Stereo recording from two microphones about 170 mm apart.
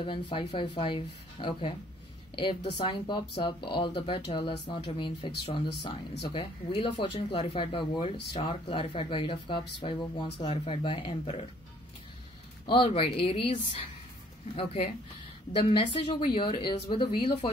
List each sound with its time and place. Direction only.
0.0 s speech: 30° left (ahead or behind)
12.6 s speech: 30° left (ahead or behind)